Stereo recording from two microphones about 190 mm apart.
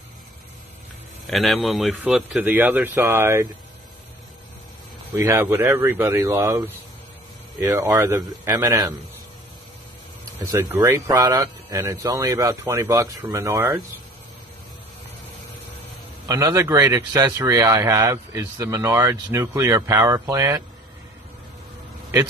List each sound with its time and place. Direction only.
1.2 s speech: centre (ahead or behind)
5.1 s speech: 15° right (ahead or behind)
10.4 s speech: 15° right (ahead or behind)
16.3 s speech: 15° right (ahead or behind)